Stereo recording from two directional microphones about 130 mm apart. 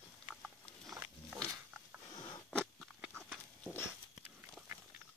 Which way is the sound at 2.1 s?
30° left (ahead or behind).